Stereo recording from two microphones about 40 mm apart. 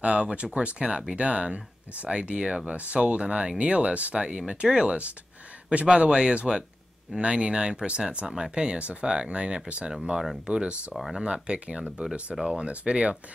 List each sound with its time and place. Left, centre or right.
0.0 s speech: right
12.0 s speech: right